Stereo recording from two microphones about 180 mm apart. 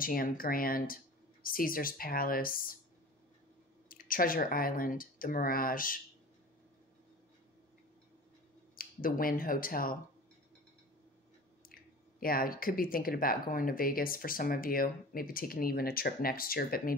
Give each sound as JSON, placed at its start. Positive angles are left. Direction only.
{"t": 0.0, "sound": "speech", "side_deg": 55}
{"t": 3.9, "sound": "speech", "side_deg": 50}
{"t": 8.7, "sound": "speech", "side_deg": 50}
{"t": 11.7, "sound": "speech", "side_deg": 55}